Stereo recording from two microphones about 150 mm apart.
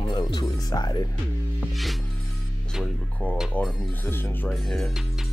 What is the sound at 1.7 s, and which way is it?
Music, centre (ahead or behind).